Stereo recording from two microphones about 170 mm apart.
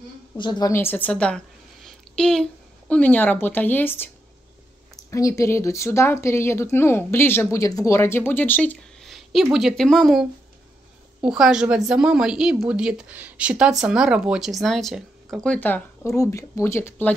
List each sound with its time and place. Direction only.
0.4 s a woman's voice: 25° left (ahead or behind)